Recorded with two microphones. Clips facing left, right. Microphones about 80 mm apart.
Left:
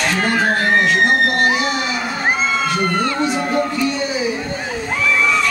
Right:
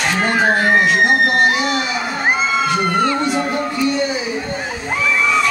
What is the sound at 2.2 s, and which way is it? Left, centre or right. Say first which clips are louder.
Crowd: right 2 dB; centre.